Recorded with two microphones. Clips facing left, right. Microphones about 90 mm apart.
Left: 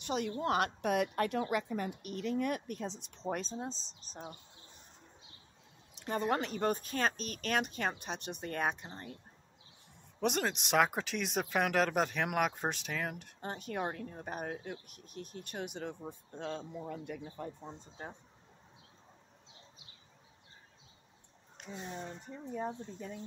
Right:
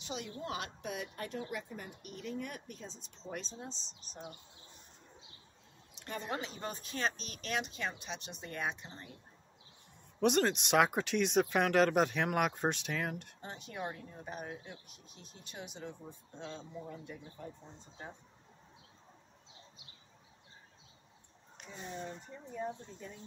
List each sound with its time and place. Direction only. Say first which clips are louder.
0.0 s a woman's voice: left 7 dB; 55° left (ahead or behind)
3.5 s speech: left 6 dB; 35° left (ahead or behind)
6.0 s speech: left 7 dB; 45° left (ahead or behind)
10.2 s speech: right 4 dB; centre (ahead or behind)
13.4 s a woman's voice: left 9 dB; 50° left (ahead or behind); by 17.5 s 70° left (ahead or behind)